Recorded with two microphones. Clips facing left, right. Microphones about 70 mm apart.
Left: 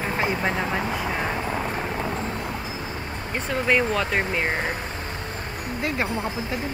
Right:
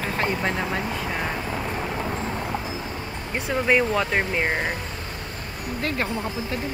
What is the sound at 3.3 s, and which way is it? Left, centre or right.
Speech, centre.